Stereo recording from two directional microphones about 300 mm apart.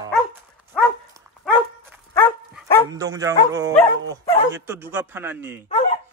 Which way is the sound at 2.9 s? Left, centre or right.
Centre.